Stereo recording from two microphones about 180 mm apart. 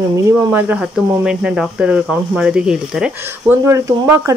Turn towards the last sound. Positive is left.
turn(degrees=-15)  # may be behind; listen again after turning